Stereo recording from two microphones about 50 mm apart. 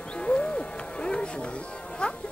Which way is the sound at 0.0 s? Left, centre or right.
Centre.